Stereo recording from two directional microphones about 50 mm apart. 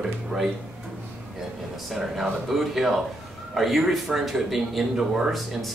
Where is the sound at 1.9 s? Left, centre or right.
Centre.